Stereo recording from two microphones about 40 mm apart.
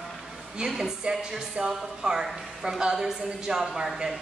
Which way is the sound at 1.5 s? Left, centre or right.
Right.